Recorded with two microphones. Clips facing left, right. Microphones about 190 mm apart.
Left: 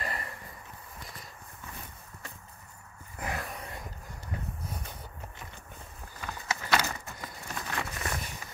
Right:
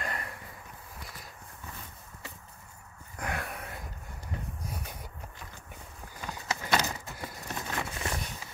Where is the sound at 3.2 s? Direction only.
Centre (ahead or behind).